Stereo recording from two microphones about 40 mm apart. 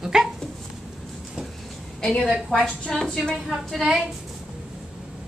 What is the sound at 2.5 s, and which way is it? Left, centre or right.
Speech, left.